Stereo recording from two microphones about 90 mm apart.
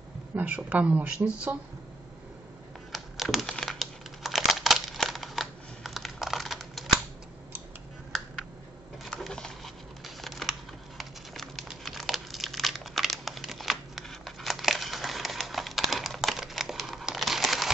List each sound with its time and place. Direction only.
0.3 s speech: 30° right (ahead or behind)
0.7 s speech: 15° right (ahead or behind)
2.9 s crumpling: centre (ahead or behind)
9.2 s a sound: 5° left (ahead or behind)
11.0 s crumpling: centre (ahead or behind)